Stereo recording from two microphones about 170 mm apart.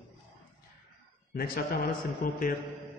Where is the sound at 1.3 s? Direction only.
60° left (ahead or behind).